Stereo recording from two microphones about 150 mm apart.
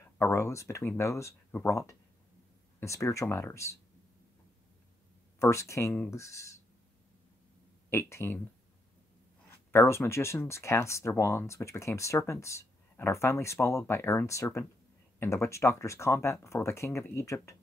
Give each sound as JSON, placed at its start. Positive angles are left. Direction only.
{"t": 0.2, "sound": "speech", "side_deg": 15}
{"t": 5.4, "sound": "speech", "side_deg": 20}
{"t": 7.9, "sound": "speech", "side_deg": 20}
{"t": 9.7, "sound": "speech", "side_deg": 15}